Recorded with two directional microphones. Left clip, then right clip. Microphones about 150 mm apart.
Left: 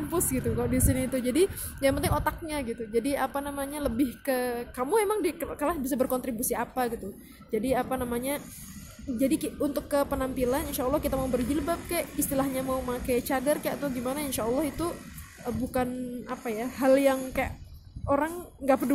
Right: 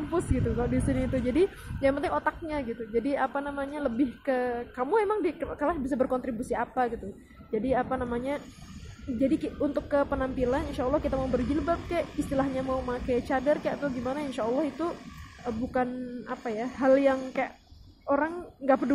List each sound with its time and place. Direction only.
0.1 s a woman's voice: 25° left (ahead or behind)